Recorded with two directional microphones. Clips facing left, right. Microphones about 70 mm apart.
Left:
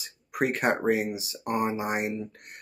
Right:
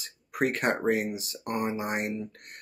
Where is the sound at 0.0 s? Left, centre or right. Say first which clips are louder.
Even; centre.